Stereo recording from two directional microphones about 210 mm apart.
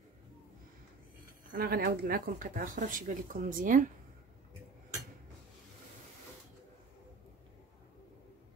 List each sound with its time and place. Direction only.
1.5 s speech: 45° right (ahead or behind)